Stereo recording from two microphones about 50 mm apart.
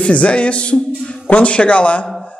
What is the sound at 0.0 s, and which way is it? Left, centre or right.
A man's voice, left.